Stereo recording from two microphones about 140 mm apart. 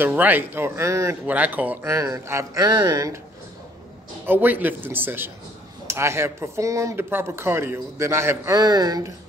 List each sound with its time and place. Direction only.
0.0 s speech: 15° right (ahead or behind)
1.2 s speech: 10° right (ahead or behind)
4.3 s speech: 15° right (ahead or behind)